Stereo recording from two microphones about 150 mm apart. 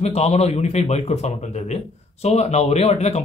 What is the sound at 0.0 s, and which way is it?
Speech, 45° left (ahead or behind).